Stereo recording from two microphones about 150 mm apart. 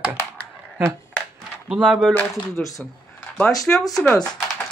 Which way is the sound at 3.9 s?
5° left (ahead or behind).